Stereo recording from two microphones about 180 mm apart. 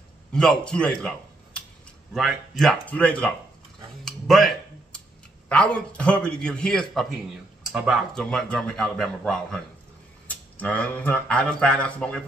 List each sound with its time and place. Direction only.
0.3 s a man's voice: 5° left (ahead or behind)
2.1 s a man's voice: centre (ahead or behind)
4.0 s a sound: centre (ahead or behind)
5.5 s a man's voice: 5° left (ahead or behind)